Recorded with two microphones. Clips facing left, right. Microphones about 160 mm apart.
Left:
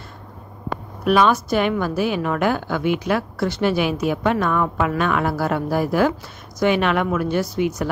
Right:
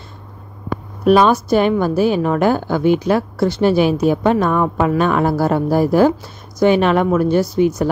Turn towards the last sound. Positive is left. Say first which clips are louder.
# right 6 dB
turn(degrees=-35)  # may be behind; listen again after turning